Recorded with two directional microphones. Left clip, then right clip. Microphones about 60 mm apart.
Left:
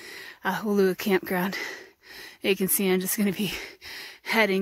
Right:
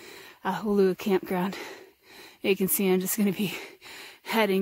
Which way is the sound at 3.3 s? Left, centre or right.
Centre.